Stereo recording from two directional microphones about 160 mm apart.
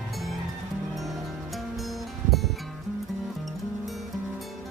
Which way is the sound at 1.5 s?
Centre (ahead or behind).